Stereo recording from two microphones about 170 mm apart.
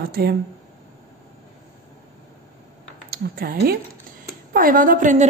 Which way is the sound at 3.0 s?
60° right (ahead or behind).